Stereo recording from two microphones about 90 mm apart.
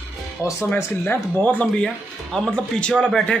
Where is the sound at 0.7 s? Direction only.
20° left (ahead or behind).